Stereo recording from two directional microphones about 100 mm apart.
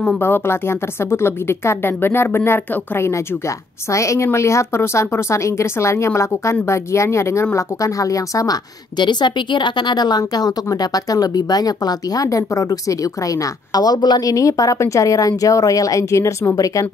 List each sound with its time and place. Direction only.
0.2 s a woman's voice: 25° left (ahead or behind)